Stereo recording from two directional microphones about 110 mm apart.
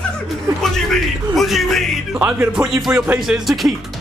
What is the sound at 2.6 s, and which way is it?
Speech, 15° right (ahead or behind).